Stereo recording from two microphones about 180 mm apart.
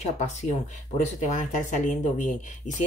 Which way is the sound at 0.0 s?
40° left (ahead or behind).